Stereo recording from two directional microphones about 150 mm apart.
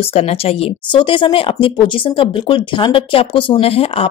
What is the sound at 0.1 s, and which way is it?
Speech, 40° left (ahead or behind).